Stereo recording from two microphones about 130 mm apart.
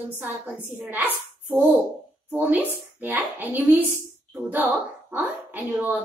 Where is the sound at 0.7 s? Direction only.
15° right (ahead or behind).